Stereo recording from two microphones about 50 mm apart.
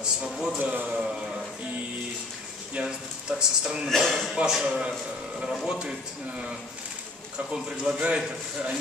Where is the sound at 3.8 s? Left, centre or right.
Centre.